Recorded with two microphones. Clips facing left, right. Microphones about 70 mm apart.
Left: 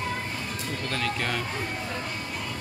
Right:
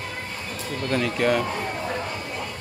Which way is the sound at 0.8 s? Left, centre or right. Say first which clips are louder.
Right 8 dB; centre.